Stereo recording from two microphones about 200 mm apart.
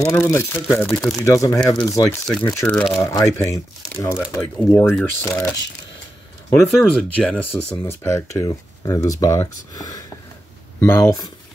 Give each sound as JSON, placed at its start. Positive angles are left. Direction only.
{"t": 0.0, "sound": "speech", "side_deg": 15}
{"t": 0.8, "sound": "speech", "side_deg": 0}
{"t": 1.2, "sound": "speech", "side_deg": 15}
{"t": 2.2, "sound": "speech", "side_deg": 5}
{"t": 3.0, "sound": "speech", "side_deg": 15}
{"t": 6.5, "sound": "speech", "side_deg": 5}